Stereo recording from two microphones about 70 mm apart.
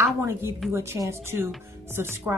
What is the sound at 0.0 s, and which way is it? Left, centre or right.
A woman's voice, right.